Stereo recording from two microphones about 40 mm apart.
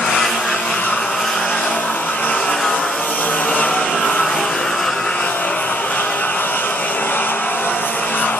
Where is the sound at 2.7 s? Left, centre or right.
Left.